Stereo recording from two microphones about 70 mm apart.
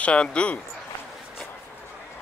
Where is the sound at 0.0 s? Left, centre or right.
Centre.